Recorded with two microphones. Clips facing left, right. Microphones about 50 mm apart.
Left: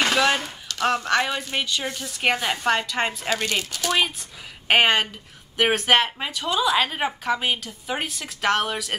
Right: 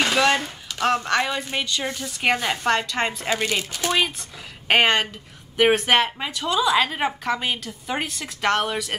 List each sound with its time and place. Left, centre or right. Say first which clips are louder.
0.4 s a sound: right 1 dB; centre
0.8 s a woman's voice: even; centre
3.3 s speech: right 1 dB; centre
4.6 s a woman's voice: even; centre